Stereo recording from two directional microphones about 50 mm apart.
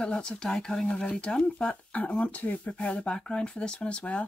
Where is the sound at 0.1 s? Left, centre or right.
Centre.